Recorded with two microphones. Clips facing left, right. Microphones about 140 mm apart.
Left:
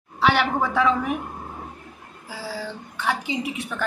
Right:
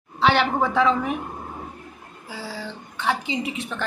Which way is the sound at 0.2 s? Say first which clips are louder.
Right 1 dB; 5° left (ahead or behind).